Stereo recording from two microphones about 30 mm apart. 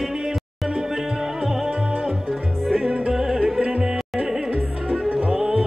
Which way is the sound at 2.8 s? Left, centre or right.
Right.